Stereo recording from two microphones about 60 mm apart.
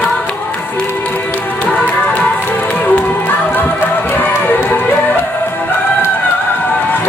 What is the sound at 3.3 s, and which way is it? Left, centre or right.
Music, left.